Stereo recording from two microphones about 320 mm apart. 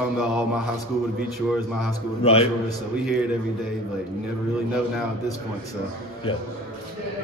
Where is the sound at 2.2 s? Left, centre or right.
Centre.